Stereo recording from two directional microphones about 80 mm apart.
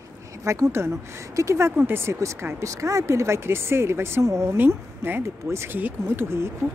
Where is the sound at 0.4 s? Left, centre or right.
Right.